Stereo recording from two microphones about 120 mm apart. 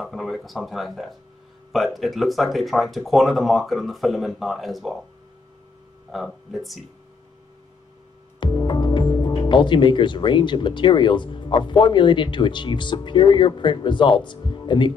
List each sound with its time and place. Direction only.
0.0 s speech: centre (ahead or behind)
6.1 s speech: centre (ahead or behind)
8.4 s speech: 40° left (ahead or behind)